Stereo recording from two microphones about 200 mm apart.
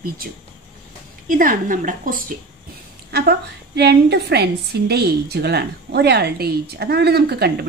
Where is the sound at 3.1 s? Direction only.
55° right (ahead or behind).